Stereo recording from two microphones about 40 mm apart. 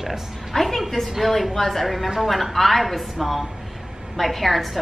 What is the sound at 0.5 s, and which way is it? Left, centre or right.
A woman's voice, centre.